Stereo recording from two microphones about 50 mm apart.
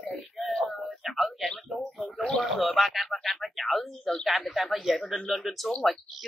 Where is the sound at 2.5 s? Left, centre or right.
Centre.